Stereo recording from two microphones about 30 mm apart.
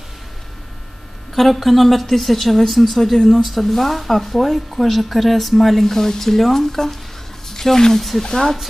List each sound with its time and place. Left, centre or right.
1.5 s speech: centre